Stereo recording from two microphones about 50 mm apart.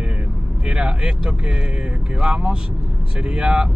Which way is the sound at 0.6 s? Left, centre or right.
Centre.